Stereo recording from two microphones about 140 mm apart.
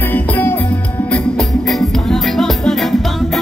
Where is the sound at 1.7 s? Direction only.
Centre (ahead or behind).